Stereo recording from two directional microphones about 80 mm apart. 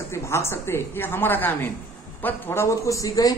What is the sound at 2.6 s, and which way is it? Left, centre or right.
Speech, left.